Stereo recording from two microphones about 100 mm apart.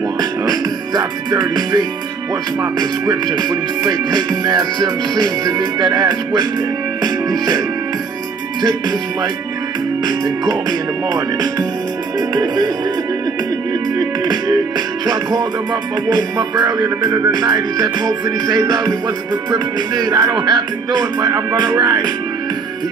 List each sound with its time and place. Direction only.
0.2 s music: 45° right (ahead or behind)
8.6 s music: 40° right (ahead or behind)
13.9 s music: 45° right (ahead or behind)